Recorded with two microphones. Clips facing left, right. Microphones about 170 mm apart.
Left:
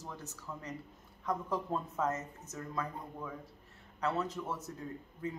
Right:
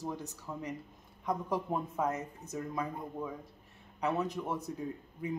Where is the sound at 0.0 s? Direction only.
15° right (ahead or behind).